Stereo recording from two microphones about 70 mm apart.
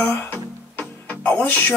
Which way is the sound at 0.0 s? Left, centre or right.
Left.